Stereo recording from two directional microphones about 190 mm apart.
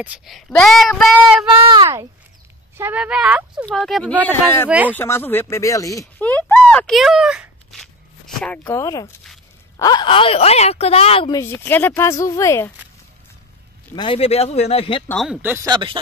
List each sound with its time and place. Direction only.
0.0 s speech: 5° right (ahead or behind)
1.5 s speech: 25° right (ahead or behind)
2.8 s speech: 5° right (ahead or behind); by 4.6 s 10° left (ahead or behind)
4.6 s speech: 5° right (ahead or behind)
4.9 s speech: 10° left (ahead or behind); by 11.3 s 30° left (ahead or behind)
11.3 s speech: 10° left (ahead or behind)
13.9 s speech: 30° left (ahead or behind)
15.0 s speech: centre (ahead or behind)
15.4 s speech: 10° right (ahead or behind)
15.7 s speech: 25° right (ahead or behind)